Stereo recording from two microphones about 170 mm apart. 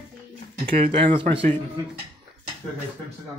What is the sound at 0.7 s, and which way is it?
Speech, 30° right (ahead or behind).